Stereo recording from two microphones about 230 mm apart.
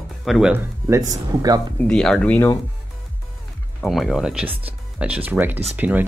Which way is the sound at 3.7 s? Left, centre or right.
Centre.